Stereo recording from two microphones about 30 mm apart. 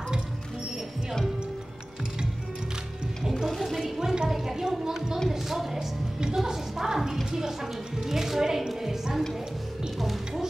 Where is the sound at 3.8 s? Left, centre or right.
Centre.